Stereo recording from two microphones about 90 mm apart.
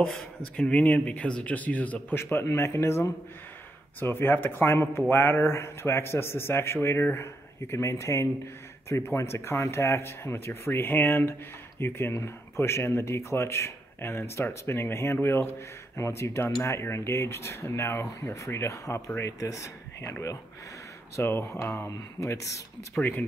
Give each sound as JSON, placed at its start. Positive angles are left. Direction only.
{"t": 0.6, "sound": "speech", "side_deg": 15}
{"t": 22.9, "sound": "speech", "side_deg": 20}